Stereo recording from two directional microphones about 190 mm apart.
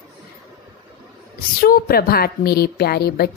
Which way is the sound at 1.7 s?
50° left (ahead or behind).